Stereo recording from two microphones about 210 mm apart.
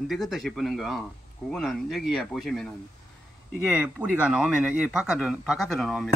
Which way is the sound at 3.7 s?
10° right (ahead or behind).